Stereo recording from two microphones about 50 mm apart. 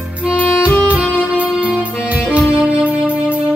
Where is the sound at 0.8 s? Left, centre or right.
Right.